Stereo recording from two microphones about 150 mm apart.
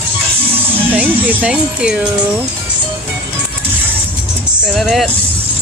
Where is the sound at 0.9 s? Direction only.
10° right (ahead or behind).